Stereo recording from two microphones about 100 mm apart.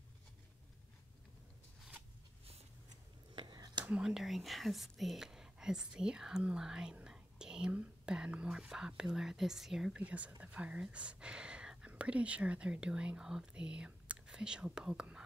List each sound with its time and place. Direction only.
3.3 s a sound: 45° right (ahead or behind)
3.8 s speech: 10° right (ahead or behind)
10.0 s speech: 15° right (ahead or behind)